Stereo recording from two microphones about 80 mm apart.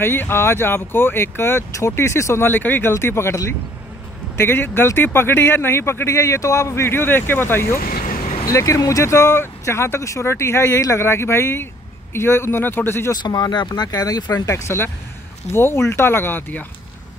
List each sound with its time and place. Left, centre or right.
0.0 s speech: left
4.4 s speech: left
8.5 s speech: left
13.1 s speech: left
13.8 s speech: left
14.5 s speech: left